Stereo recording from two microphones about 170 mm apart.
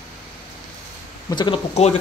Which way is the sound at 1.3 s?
25° left (ahead or behind).